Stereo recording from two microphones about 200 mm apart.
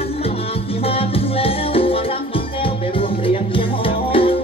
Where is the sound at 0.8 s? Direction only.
30° left (ahead or behind).